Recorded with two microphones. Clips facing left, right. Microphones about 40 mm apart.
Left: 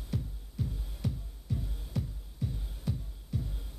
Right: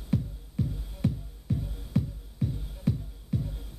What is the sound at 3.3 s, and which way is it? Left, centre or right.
Music, centre.